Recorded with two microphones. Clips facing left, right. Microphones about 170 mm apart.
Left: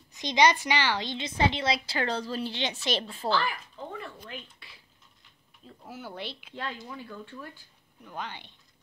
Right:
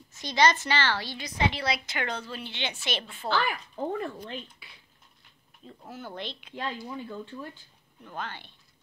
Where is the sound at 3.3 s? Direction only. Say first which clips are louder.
Even; 55° right (ahead or behind).